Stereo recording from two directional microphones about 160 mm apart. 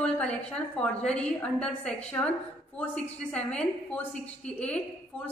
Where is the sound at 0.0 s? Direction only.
5° left (ahead or behind).